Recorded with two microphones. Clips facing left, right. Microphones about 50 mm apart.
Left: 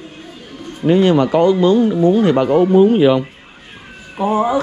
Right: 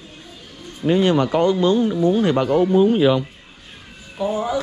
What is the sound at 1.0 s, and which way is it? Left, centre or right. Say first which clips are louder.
Speech: left 4 dB; left.